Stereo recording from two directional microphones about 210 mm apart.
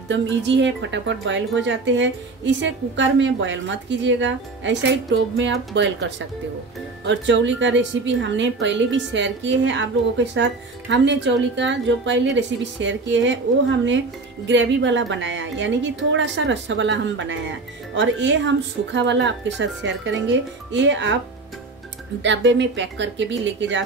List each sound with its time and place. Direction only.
0.1 s a woman's voice: 60° right (ahead or behind)
22.2 s a woman's voice: 60° right (ahead or behind)